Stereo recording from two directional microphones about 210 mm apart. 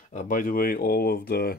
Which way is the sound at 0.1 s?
40° left (ahead or behind).